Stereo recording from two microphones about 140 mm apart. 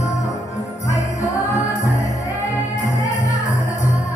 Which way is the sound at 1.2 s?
25° left (ahead or behind).